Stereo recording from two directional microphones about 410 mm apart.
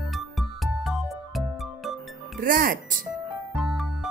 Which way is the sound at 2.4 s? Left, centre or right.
Centre.